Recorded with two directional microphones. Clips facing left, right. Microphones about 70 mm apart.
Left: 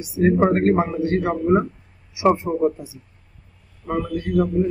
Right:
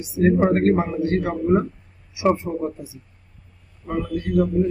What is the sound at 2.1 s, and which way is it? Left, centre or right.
Speech, centre.